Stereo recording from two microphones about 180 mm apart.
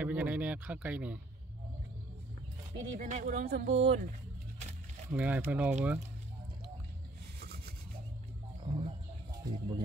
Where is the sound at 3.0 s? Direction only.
40° right (ahead or behind).